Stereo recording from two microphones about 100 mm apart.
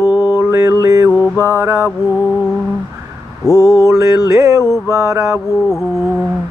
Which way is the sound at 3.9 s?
30° right (ahead or behind).